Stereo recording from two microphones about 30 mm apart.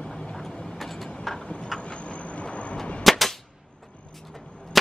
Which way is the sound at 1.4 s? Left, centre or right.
Left.